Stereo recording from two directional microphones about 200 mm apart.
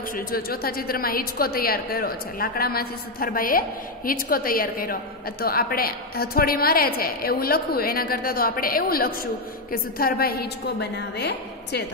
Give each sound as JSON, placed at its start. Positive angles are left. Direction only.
{"t": 0.1, "sound": "a woman's voice", "side_deg": 50}